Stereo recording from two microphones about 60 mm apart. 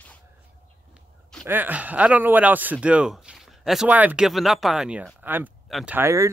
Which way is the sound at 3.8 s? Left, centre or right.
Right.